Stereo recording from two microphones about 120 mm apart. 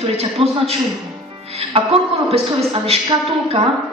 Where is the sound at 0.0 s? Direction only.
55° right (ahead or behind).